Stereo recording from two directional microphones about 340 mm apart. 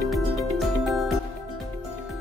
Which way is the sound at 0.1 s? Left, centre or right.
Centre.